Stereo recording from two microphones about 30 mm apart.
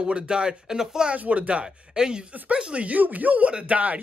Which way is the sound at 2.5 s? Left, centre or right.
Right.